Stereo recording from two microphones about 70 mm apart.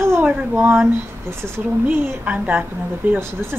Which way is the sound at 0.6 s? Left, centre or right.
Right.